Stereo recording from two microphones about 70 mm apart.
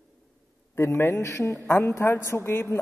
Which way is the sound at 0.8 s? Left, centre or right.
Left.